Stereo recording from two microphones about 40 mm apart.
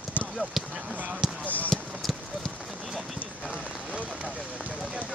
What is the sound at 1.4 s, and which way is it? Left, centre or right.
Basketball bounce, left.